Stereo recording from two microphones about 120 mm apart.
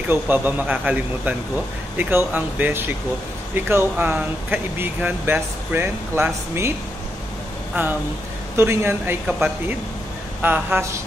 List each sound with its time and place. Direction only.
0.1 s speech: 15° right (ahead or behind)
8.5 s speech: 20° right (ahead or behind)